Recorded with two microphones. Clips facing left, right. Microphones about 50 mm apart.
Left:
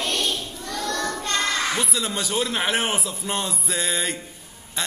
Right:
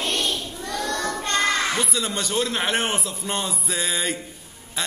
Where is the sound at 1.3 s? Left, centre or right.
Right.